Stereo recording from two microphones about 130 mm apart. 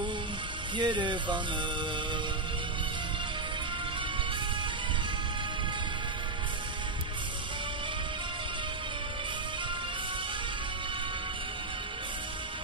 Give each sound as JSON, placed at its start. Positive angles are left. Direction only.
{"t": 0.7, "sound": "speech", "side_deg": -35}